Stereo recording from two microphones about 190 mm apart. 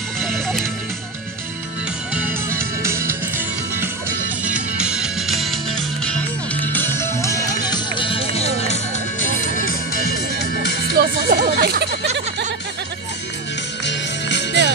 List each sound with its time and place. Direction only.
0.2 s music: centre (ahead or behind)
2.1 s music: 10° right (ahead or behind); by 8.7 s 35° left (ahead or behind)
11.0 s a sound: 55° right (ahead or behind)
13.8 s music: 65° left (ahead or behind)